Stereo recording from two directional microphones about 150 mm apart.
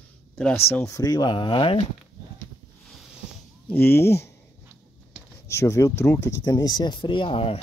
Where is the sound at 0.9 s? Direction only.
25° left (ahead or behind).